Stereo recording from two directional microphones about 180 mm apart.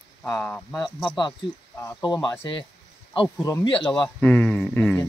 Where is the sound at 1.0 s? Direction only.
25° left (ahead or behind).